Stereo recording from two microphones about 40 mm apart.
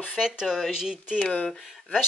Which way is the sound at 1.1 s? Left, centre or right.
Left.